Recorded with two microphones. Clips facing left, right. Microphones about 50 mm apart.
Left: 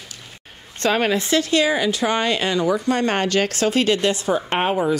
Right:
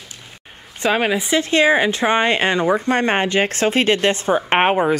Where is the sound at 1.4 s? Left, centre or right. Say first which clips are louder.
Right 6 dB; right.